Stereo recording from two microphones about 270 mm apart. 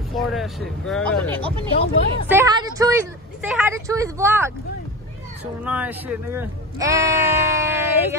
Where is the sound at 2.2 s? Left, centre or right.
Centre.